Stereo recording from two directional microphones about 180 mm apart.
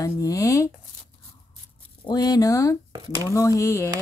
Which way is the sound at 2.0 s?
20° left (ahead or behind).